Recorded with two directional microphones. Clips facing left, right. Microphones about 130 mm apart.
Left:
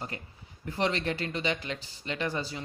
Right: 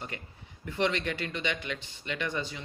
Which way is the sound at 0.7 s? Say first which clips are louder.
Even; 35° left (ahead or behind).